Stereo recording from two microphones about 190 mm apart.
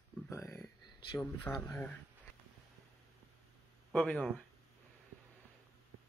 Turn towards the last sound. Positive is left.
turn(degrees=5)  # may be behind; listen again after turning